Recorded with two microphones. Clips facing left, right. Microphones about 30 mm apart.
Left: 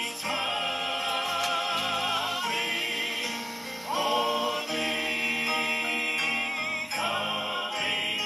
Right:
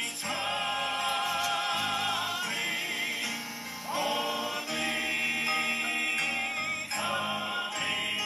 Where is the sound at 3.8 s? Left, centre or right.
Left.